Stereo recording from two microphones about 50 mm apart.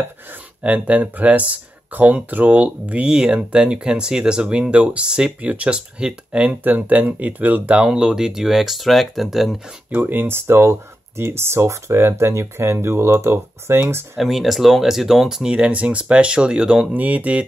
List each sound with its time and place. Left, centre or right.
0.3 s speech: right
6.6 s speech: right
7.7 s speech: centre
9.8 s speech: right
14.1 s speech: centre
15.5 s speech: right
16.9 s speech: right